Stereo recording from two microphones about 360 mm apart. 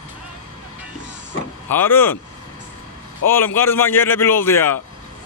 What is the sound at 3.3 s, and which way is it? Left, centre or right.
A man's voice, centre.